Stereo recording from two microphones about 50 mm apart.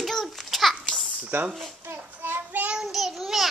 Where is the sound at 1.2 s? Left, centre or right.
Right.